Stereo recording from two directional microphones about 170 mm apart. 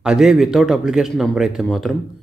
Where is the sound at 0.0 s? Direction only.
5° right (ahead or behind).